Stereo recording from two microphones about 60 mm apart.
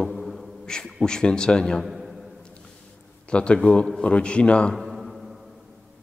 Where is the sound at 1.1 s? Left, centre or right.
Centre.